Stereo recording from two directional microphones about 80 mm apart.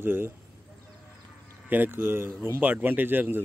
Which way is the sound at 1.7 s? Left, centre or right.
Right.